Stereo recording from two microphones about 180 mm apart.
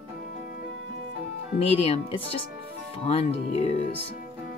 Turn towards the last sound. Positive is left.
turn(degrees=35)  # may be behind; listen again after turning